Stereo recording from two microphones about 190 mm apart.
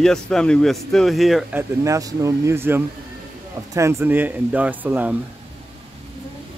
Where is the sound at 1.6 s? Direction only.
15° right (ahead or behind).